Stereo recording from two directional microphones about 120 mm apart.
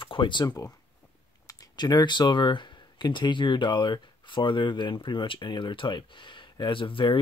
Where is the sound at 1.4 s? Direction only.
30° left (ahead or behind).